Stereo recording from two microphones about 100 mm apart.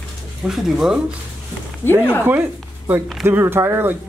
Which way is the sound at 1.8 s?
20° left (ahead or behind).